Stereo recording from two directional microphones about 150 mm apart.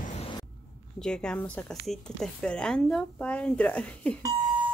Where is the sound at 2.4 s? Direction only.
5° left (ahead or behind).